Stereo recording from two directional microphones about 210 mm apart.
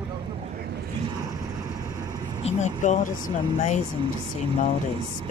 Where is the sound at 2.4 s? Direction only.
35° left (ahead or behind).